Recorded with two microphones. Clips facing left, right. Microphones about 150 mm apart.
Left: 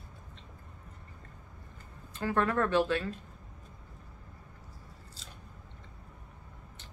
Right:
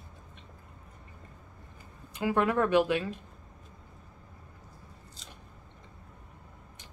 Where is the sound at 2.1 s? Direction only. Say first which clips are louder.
Right 2 dB; 15° right (ahead or behind).